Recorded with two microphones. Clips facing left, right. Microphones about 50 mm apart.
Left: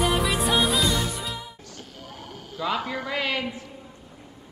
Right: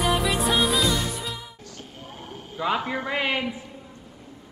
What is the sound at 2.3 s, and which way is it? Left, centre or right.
A man's voice, right.